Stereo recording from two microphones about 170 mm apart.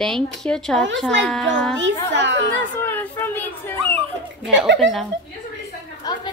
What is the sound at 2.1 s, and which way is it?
Speech, 90° right.